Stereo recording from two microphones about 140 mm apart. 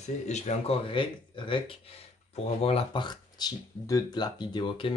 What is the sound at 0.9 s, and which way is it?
Speech, 35° left (ahead or behind).